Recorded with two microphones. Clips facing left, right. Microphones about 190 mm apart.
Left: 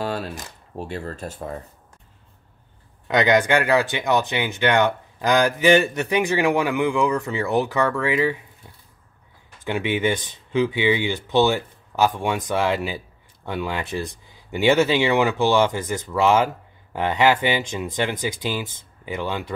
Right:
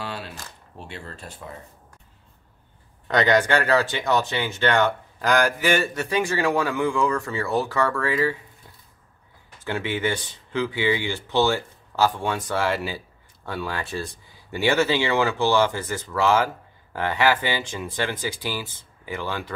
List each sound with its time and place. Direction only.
0.0 s speech: 40° left (ahead or behind)
3.1 s speech: 15° left (ahead or behind)
9.7 s speech: 15° left (ahead or behind)